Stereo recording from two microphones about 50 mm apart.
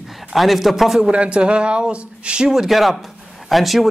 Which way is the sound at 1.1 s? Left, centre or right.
Right.